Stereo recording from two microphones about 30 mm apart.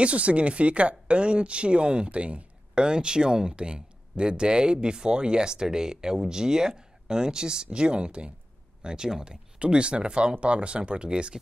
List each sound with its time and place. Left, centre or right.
0.0 s speech: right
2.8 s speech: right
3.5 s speech: right
8.8 s speech: right
9.6 s speech: right